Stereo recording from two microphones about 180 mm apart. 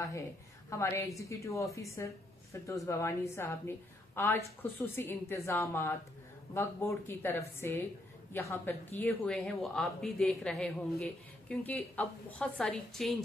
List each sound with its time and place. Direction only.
0.7 s a woman's voice: 15° left (ahead or behind)